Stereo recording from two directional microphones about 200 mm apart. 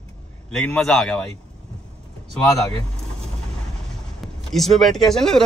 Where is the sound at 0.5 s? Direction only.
5° left (ahead or behind).